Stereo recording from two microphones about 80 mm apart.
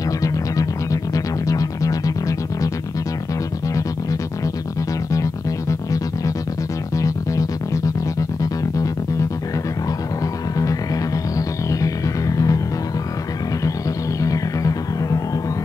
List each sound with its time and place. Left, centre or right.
1.1 s music: left
5.1 s music: left
10.5 s music: left
13.7 s music: left